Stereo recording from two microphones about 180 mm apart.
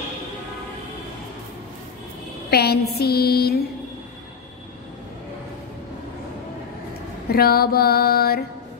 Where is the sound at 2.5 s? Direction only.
60° left (ahead or behind).